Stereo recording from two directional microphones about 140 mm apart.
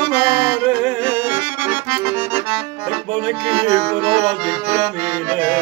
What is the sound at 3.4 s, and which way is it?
Music, 40° right (ahead or behind).